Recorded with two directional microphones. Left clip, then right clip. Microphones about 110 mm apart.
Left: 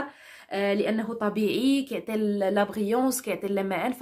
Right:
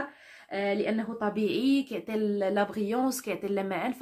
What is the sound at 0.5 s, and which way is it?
Speech, 40° left (ahead or behind).